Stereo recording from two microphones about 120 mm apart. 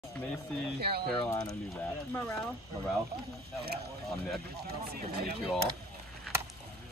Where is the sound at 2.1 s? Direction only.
15° left (ahead or behind).